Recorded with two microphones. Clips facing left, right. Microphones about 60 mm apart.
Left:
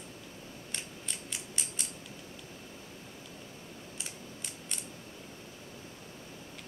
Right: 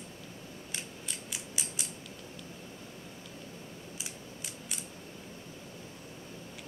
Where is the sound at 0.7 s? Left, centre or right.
Centre.